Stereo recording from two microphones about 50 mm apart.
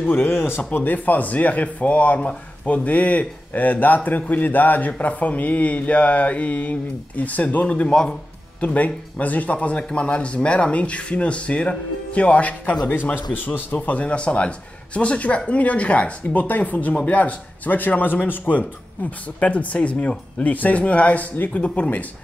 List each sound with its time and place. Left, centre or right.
0.0 s speech: left
0.7 s speech: left
7.9 s music: centre
8.6 s speech: left
21.6 s speech: left